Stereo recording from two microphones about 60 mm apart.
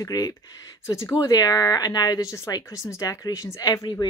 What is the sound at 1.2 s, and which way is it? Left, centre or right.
Speech, left.